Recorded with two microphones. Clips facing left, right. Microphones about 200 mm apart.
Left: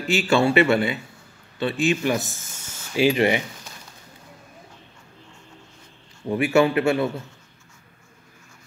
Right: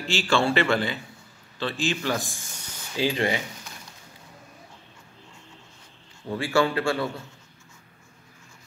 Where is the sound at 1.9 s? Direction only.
20° left (ahead or behind).